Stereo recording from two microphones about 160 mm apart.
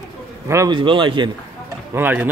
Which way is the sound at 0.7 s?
30° right (ahead or behind).